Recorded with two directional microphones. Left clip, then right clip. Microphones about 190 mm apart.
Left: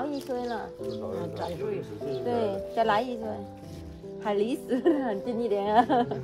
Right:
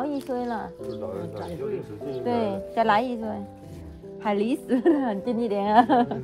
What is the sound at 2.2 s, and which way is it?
A woman's voice, 30° right (ahead or behind).